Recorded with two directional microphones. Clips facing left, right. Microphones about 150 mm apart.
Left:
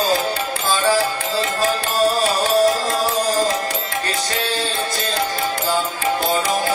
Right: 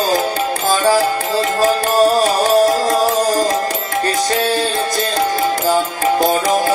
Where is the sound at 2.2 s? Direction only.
40° right (ahead or behind).